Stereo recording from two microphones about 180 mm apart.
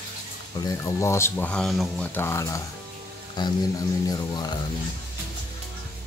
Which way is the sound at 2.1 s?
15° left (ahead or behind).